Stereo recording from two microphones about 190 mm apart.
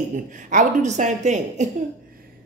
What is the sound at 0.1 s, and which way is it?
Speech, 40° right (ahead or behind).